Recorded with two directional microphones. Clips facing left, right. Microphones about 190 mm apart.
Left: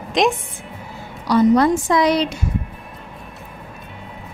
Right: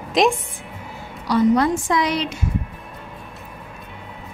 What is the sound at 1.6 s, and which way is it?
Speech, 35° left (ahead or behind).